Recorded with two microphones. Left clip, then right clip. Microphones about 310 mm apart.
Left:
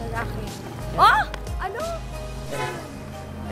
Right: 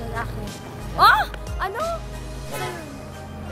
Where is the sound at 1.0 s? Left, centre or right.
Centre.